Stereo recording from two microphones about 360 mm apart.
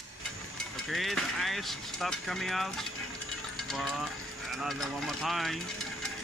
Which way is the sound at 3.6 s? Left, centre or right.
Centre.